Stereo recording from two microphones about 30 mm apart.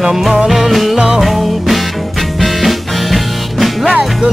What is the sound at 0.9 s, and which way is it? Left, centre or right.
Music, right.